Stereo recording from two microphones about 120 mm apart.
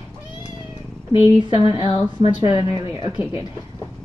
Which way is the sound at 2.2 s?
55° left (ahead or behind).